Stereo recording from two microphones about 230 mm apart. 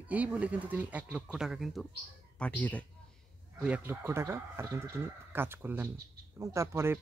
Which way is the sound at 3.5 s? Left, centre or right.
Centre.